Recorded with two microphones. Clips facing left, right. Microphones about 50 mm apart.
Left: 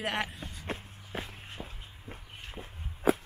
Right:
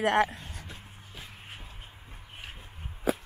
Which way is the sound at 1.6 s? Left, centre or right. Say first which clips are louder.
Left 6 dB; left.